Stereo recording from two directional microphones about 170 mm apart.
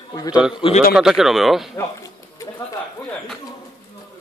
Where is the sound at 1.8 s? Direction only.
15° left (ahead or behind).